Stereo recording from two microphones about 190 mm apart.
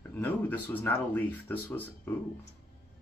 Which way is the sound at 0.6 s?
10° left (ahead or behind).